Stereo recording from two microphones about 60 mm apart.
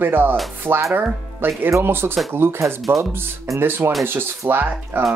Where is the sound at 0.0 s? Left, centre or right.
Right.